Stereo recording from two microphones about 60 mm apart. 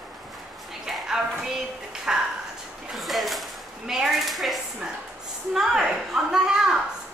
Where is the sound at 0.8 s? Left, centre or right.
Centre.